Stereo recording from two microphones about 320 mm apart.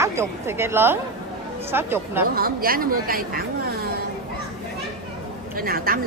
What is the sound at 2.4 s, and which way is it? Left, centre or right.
Speech, right.